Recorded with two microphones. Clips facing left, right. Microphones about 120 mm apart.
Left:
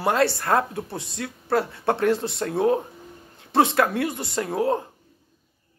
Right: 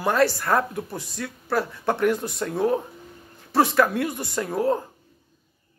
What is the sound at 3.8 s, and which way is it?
Speech, 25° left (ahead or behind).